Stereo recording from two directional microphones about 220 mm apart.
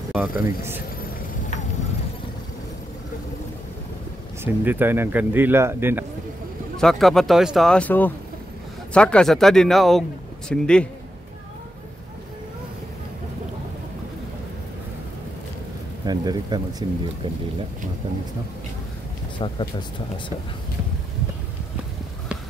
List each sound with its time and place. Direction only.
0.1 s speech: 10° right (ahead or behind)
4.6 s speech: 10° right (ahead or behind)
6.8 s speech: centre (ahead or behind)
16.1 s speech: 20° right (ahead or behind)
19.3 s speech: 20° left (ahead or behind)